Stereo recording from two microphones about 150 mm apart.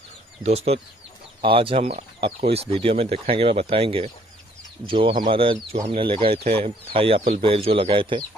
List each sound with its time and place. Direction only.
0.4 s speech: 45° right (ahead or behind)